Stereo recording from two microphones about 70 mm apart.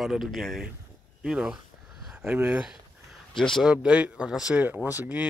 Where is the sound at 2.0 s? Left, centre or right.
Centre.